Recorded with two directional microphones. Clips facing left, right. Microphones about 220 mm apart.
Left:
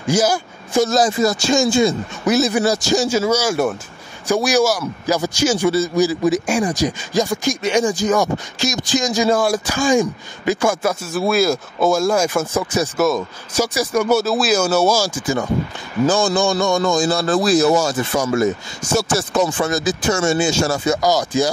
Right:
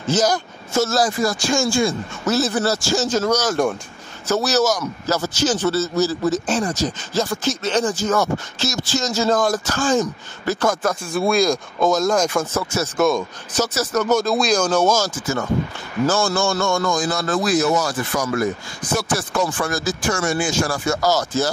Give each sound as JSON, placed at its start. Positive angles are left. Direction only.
{"t": 0.0, "sound": "a man's voice", "side_deg": 10}
{"t": 18.8, "sound": "speech", "side_deg": 45}
{"t": 19.1, "sound": "a man's voice", "side_deg": 20}